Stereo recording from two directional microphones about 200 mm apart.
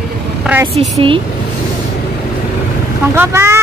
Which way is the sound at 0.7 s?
30° right (ahead or behind).